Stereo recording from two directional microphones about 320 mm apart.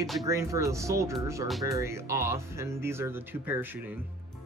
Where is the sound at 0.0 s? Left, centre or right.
Centre.